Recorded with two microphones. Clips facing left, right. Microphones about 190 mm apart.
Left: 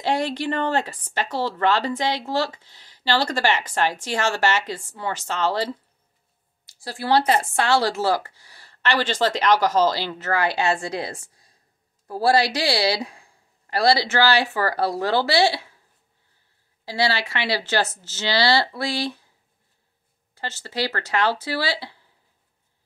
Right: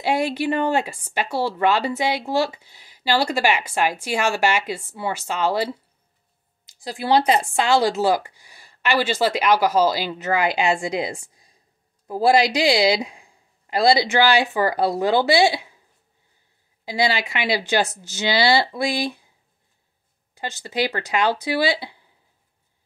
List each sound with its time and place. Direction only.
0.0 s speech: 10° right (ahead or behind)
16.8 s speech: 15° right (ahead or behind)
20.3 s speech: 15° right (ahead or behind)